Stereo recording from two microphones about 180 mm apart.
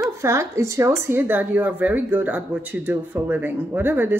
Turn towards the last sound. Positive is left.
turn(degrees=-10)  # may be behind; listen again after turning